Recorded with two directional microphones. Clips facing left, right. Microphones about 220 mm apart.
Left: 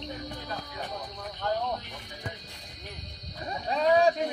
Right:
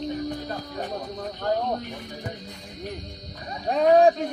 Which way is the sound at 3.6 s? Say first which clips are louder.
Right 6 dB; 55° right (ahead or behind).